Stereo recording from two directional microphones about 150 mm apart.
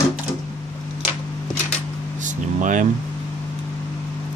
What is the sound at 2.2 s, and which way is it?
Vehicle, 55° right (ahead or behind).